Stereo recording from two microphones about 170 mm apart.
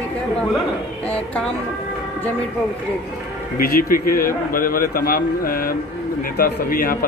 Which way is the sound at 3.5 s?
60° left (ahead or behind).